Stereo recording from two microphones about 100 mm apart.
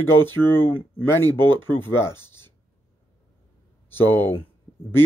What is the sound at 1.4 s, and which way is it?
Speech, 50° right (ahead or behind).